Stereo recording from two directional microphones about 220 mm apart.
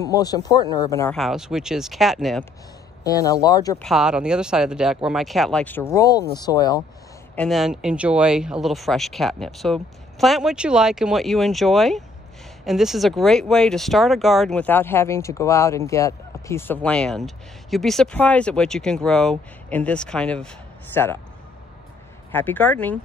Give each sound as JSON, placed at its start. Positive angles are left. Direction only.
{"t": 0.0, "sound": "speech", "side_deg": 15}
{"t": 1.1, "sound": "speech", "side_deg": 0}
{"t": 3.0, "sound": "speech", "side_deg": 15}
{"t": 3.8, "sound": "speech", "side_deg": 0}
{"t": 7.3, "sound": "speech", "side_deg": 0}
{"t": 22.3, "sound": "speech", "side_deg": 10}